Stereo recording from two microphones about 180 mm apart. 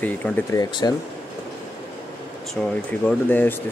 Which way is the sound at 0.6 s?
20° left (ahead or behind).